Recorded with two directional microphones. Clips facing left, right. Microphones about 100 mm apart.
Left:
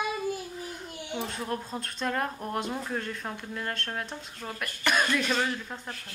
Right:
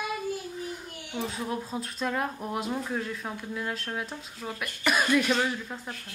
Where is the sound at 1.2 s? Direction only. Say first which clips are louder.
Right 2 dB; centre (ahead or behind).